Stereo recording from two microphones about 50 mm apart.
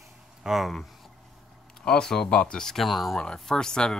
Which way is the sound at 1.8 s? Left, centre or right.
Centre.